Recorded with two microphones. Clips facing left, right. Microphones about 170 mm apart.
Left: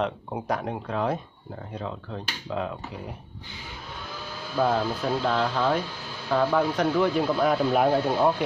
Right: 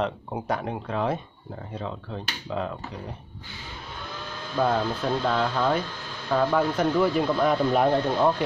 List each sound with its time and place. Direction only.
0.0 s speech: centre (ahead or behind)
4.1 s speech: 5° left (ahead or behind)